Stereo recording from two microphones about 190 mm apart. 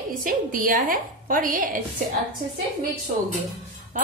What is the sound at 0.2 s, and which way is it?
A woman's voice, 45° right (ahead or behind).